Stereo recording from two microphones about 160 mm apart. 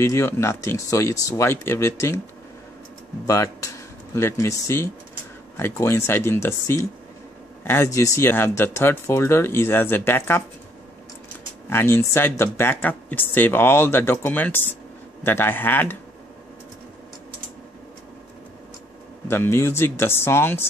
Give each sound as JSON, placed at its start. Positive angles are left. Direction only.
{"t": 0.0, "sound": "speech", "side_deg": 20}
{"t": 3.3, "sound": "speech", "side_deg": 20}
{"t": 11.7, "sound": "speech", "side_deg": 15}
{"t": 19.2, "sound": "speech", "side_deg": 15}